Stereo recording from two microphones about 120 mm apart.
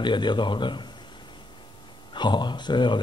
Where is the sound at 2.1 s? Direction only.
40° left (ahead or behind).